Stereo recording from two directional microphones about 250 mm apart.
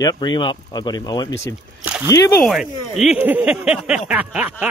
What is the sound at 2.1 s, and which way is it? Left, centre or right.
Speech, left.